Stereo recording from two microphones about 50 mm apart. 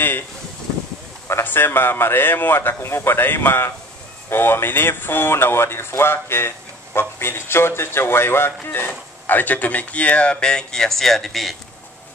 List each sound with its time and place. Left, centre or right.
1.4 s speech: left
8.7 s speech: left; by 11.5 s centre